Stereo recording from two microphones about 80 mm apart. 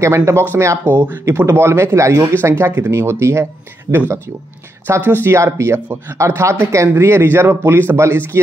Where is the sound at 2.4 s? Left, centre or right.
Right.